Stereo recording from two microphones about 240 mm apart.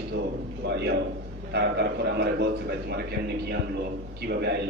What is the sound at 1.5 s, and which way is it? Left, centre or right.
A man's voice, right.